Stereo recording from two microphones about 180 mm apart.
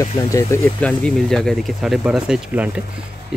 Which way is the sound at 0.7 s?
5° left (ahead or behind).